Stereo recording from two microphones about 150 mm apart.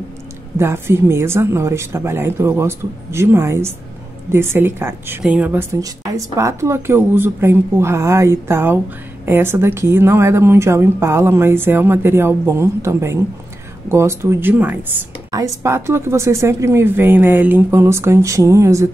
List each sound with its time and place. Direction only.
0.6 s a woman's voice: 15° right (ahead or behind)